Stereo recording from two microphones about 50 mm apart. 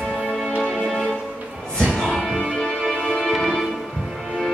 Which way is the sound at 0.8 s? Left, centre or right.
Centre.